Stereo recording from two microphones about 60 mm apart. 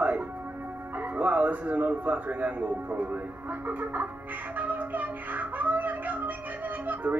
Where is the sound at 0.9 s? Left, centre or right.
Right.